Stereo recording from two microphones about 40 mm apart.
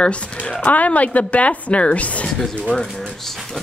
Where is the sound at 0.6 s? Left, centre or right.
Left.